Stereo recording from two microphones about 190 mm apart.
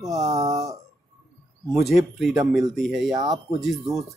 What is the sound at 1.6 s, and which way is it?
Speech, centre (ahead or behind).